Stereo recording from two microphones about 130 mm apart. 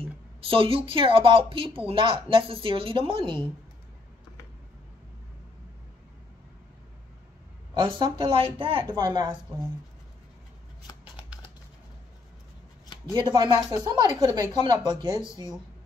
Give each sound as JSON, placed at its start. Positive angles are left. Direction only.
{"t": 0.0, "sound": "speech", "side_deg": -45}
{"t": 7.8, "sound": "speech", "side_deg": -40}
{"t": 13.1, "sound": "speech", "side_deg": -35}